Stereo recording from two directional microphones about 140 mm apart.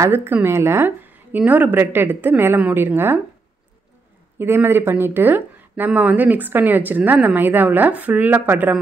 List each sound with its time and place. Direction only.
0.0 s speech: 15° right (ahead or behind)
4.4 s speech: 15° right (ahead or behind)